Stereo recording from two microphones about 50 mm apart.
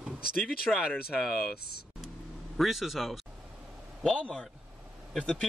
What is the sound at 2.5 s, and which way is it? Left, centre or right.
Speech, centre.